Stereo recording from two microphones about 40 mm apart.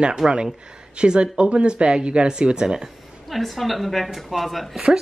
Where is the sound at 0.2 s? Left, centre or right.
Centre.